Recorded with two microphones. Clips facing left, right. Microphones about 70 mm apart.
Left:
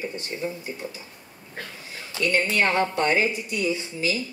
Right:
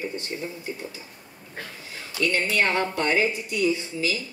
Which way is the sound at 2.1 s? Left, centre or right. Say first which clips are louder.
Left 1 dB; left.